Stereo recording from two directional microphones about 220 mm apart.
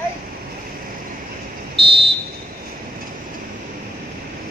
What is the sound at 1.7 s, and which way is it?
Fire alarm, 25° right (ahead or behind).